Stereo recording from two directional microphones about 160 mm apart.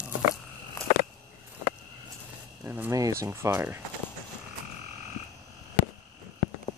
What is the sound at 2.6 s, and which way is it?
Speech, 15° right (ahead or behind).